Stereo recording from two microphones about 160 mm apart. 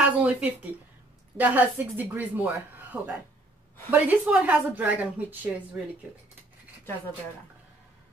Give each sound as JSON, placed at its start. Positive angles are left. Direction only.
{"t": 0.2, "sound": "speech", "side_deg": -10}